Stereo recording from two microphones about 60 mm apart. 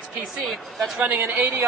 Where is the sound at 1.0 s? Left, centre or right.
Right.